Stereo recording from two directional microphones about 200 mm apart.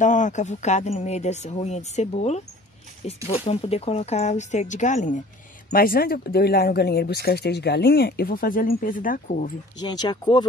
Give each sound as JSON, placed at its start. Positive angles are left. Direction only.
{"t": 0.0, "sound": "speech", "side_deg": 40}
{"t": 9.8, "sound": "speech", "side_deg": 20}